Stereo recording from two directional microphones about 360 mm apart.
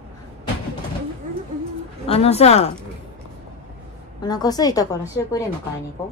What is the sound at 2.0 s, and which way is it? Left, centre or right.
Speech, centre.